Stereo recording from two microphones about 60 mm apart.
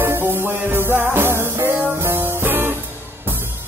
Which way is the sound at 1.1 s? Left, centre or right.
Right.